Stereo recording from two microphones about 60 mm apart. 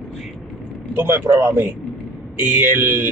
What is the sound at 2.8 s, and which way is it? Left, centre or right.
Speech, right.